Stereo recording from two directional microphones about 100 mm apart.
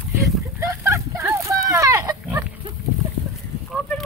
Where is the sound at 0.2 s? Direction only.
30° right (ahead or behind).